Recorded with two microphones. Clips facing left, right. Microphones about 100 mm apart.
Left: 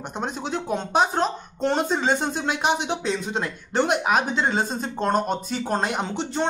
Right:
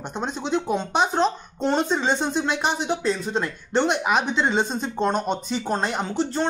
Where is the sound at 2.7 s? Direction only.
70° left (ahead or behind).